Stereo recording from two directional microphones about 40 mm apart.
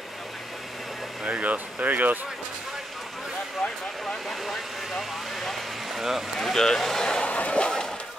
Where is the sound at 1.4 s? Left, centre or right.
Right.